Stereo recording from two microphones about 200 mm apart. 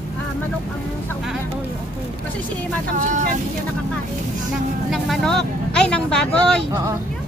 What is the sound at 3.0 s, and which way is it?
Speech, 40° right (ahead or behind).